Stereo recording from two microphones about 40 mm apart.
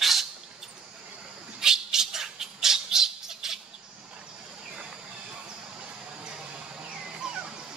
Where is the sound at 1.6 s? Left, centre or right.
Centre.